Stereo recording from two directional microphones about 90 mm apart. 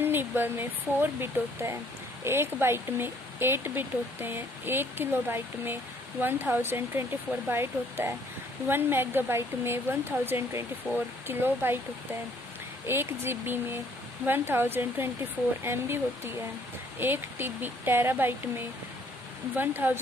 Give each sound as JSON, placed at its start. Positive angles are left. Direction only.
{"t": 0.0, "sound": "speech", "side_deg": -25}
{"t": 10.9, "sound": "speech", "side_deg": -10}
{"t": 11.2, "sound": "speech", "side_deg": -25}
{"t": 12.8, "sound": "speech", "side_deg": -25}
{"t": 19.5, "sound": "speech", "side_deg": -20}